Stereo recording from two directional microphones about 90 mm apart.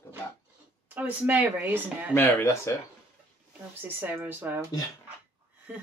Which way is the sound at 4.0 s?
20° right (ahead or behind).